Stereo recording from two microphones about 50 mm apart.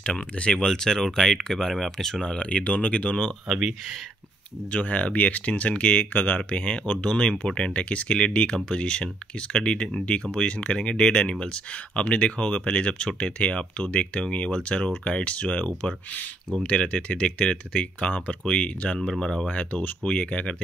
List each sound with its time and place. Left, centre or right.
0.0 s speech: centre
2.2 s speech: left
4.6 s speech: left
19.4 s speech: left